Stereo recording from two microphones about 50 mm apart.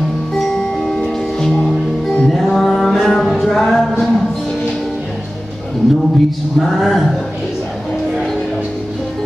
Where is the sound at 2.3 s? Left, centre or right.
Centre.